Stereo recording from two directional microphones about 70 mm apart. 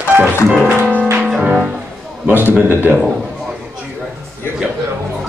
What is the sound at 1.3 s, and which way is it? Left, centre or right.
Music, centre.